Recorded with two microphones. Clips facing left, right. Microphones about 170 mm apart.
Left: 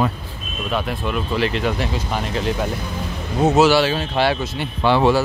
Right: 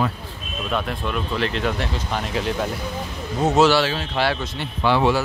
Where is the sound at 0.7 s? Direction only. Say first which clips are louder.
Left 2 dB; 5° left (ahead or behind).